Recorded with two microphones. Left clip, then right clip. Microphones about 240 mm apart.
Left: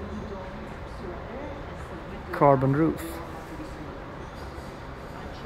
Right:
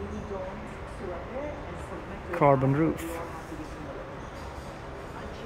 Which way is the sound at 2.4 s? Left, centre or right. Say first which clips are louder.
Left 2 dB; centre.